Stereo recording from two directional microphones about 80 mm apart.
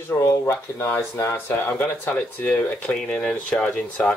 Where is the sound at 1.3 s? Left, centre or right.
Left.